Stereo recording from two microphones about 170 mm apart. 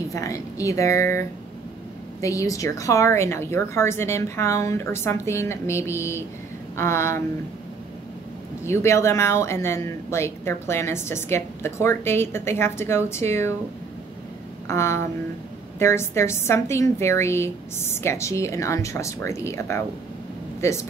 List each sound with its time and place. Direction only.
0.1 s speech: 20° left (ahead or behind)
2.2 s speech: 20° left (ahead or behind)
8.6 s speech: 15° left (ahead or behind)
14.7 s speech: 15° left (ahead or behind)